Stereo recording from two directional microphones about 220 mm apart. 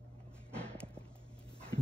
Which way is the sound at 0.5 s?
5° left (ahead or behind).